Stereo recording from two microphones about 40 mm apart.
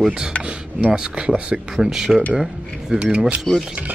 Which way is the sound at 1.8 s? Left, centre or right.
Centre.